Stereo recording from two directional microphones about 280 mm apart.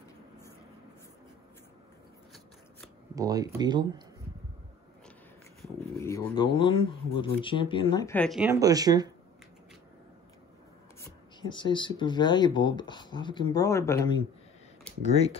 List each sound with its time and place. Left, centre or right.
3.2 s speech: centre
5.9 s speech: centre
11.0 s speech: centre
15.0 s speech: left